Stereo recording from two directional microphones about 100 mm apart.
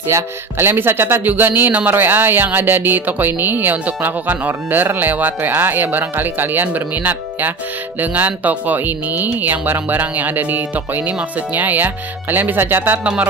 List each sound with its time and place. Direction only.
0.1 s speech: 25° right (ahead or behind)